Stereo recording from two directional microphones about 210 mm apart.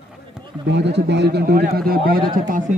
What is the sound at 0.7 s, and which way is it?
A man's voice, 55° right (ahead or behind).